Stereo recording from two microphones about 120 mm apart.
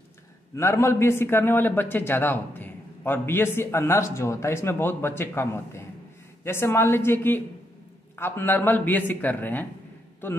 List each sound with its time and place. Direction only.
0.6 s a man's voice: 20° left (ahead or behind)